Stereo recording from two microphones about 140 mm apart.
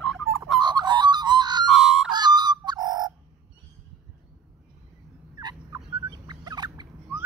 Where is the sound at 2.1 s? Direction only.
30° right (ahead or behind).